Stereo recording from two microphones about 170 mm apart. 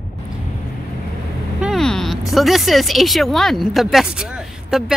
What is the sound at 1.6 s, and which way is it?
Speech, centre (ahead or behind).